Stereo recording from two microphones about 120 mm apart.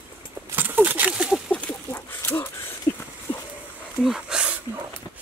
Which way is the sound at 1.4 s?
10° left (ahead or behind).